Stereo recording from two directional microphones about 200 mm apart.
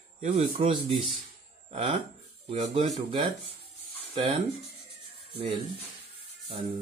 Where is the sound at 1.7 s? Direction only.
25° right (ahead or behind).